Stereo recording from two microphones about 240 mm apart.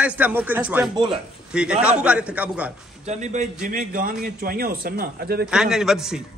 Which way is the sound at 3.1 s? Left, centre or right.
Right.